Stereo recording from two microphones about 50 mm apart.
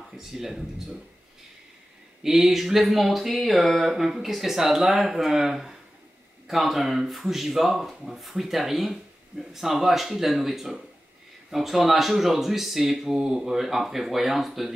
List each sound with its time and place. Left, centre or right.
0.2 s speech: centre
2.2 s speech: centre